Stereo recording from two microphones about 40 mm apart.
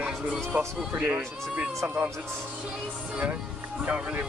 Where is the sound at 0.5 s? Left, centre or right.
Right.